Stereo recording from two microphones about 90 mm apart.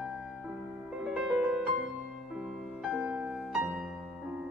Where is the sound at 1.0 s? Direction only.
10° right (ahead or behind).